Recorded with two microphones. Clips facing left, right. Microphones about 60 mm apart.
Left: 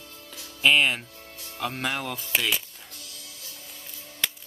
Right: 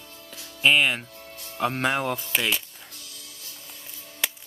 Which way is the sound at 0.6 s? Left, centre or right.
Centre.